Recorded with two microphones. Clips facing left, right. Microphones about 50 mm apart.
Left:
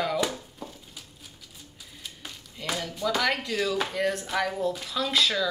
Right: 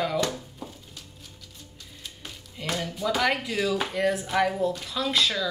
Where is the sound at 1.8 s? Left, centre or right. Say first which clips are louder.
Even; centre.